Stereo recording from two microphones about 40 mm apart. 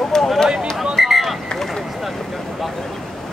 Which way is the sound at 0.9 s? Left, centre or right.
Centre.